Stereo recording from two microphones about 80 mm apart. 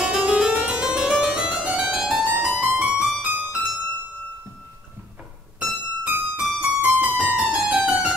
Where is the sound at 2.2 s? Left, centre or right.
Right.